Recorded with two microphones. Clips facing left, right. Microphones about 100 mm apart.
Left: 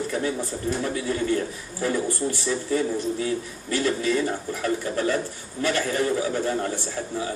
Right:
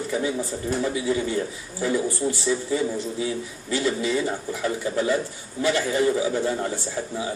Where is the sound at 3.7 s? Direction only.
15° right (ahead or behind).